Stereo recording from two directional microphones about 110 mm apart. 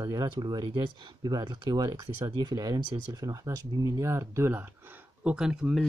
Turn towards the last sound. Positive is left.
turn(degrees=-5)  # may be behind; listen again after turning